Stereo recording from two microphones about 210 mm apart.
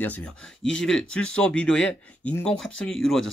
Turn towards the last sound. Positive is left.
turn(degrees=0)  # may be behind; listen again after turning